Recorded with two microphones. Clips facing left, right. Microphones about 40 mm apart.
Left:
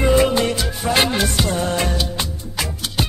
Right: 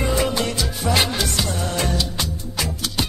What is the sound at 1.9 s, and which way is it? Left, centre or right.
Music, centre.